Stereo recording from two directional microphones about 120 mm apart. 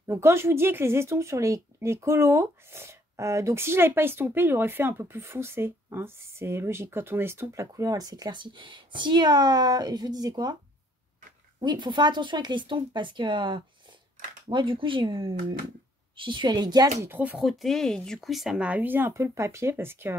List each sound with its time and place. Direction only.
0.0 s speech: 25° right (ahead or behind)
11.6 s speech: 40° right (ahead or behind)
17.0 s speech: 15° right (ahead or behind)
17.4 s speech: centre (ahead or behind); by 20.2 s 20° right (ahead or behind)